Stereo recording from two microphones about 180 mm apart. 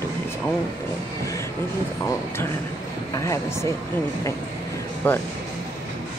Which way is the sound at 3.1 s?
15° left (ahead or behind).